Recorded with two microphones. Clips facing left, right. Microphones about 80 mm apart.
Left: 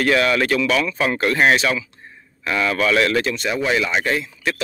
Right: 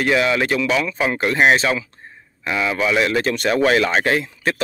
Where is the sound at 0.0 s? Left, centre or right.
Centre.